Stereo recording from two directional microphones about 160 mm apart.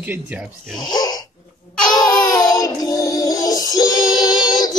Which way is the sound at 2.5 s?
20° left (ahead or behind).